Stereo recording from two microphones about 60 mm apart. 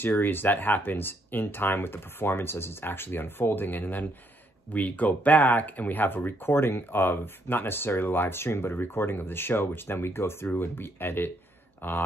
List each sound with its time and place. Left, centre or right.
0.0 s speech: left